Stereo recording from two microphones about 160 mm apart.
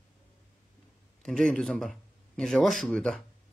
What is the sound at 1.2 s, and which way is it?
Speech, 5° left (ahead or behind).